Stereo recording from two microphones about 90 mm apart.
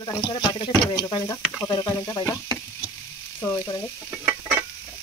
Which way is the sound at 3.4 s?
30° left (ahead or behind).